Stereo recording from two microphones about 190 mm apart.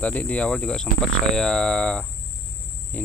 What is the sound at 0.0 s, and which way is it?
Speech, 10° left (ahead or behind).